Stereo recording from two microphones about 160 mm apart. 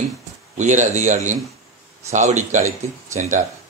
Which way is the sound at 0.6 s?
50° right (ahead or behind).